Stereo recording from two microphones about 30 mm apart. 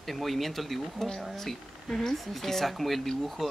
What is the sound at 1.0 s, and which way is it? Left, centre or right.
Speech, centre.